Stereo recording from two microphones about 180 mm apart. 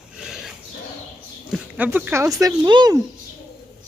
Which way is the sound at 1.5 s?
10° right (ahead or behind).